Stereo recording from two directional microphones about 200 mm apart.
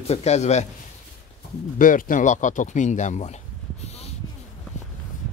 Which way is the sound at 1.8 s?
40° left (ahead or behind).